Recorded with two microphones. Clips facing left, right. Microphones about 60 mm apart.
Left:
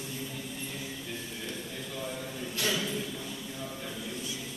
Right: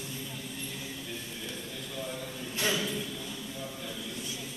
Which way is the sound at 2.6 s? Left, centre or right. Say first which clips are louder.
Right 1 dB; centre.